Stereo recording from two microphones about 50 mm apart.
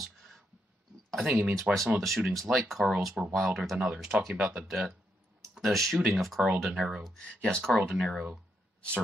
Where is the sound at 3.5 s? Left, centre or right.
Centre.